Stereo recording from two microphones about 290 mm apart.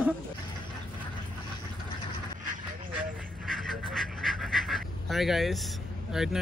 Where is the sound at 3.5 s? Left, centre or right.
Centre.